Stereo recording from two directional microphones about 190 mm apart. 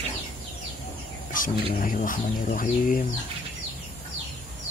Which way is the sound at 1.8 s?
45° left (ahead or behind).